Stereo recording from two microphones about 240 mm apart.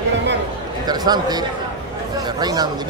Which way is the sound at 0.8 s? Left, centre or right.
Centre.